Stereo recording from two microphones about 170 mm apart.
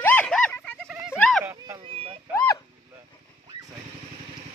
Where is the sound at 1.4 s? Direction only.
20° right (ahead or behind).